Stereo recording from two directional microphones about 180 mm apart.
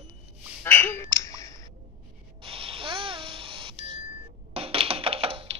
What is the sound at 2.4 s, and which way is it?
Babbling, 30° right (ahead or behind).